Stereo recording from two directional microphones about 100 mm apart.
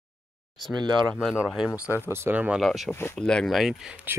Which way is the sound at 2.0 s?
20° right (ahead or behind).